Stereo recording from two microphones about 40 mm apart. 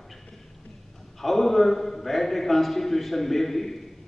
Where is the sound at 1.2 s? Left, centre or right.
Centre.